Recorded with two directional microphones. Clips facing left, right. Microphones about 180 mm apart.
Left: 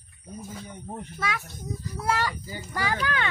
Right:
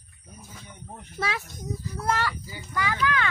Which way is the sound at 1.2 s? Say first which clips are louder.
Right 2 dB; 30° right (ahead or behind).